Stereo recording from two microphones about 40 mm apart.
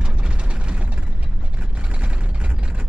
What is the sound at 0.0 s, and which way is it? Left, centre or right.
Ratchet, right.